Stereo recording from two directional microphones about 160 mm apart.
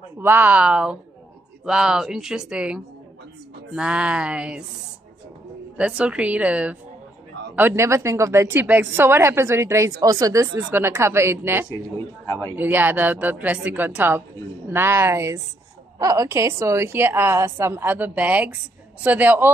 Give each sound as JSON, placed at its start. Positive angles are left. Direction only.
{"t": 0.2, "sound": "a woman's voice", "side_deg": -10}
{"t": 5.8, "sound": "a woman's voice", "side_deg": -5}
{"t": 12.3, "sound": "a man's voice", "side_deg": 15}
{"t": 12.5, "sound": "a woman's voice", "side_deg": -10}